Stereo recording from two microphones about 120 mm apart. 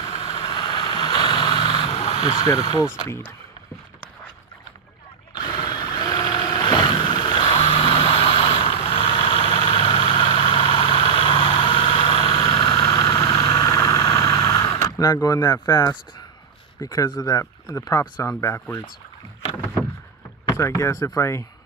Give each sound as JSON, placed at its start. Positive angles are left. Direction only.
{"t": 0.1, "sound": "vehicle", "side_deg": 50}
{"t": 0.4, "sound": "vehicle", "side_deg": 35}
{"t": 2.4, "sound": "speech", "side_deg": 30}
{"t": 3.1, "sound": "speech", "side_deg": 15}
{"t": 5.3, "sound": "a sound", "side_deg": 40}
{"t": 12.9, "sound": "vehicle", "side_deg": 25}
{"t": 16.8, "sound": "speech", "side_deg": 30}
{"t": 20.5, "sound": "speech", "side_deg": 20}